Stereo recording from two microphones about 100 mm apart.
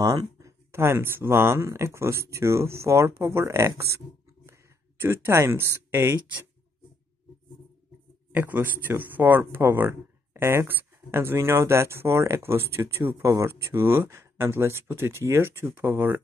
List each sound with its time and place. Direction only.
0.0 s speech: 40° right (ahead or behind)
0.7 s speech: 25° right (ahead or behind)
5.0 s speech: 25° right (ahead or behind)
8.3 s a man's voice: 20° right (ahead or behind)